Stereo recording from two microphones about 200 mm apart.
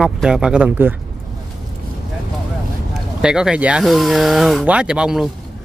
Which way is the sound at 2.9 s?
5° right (ahead or behind).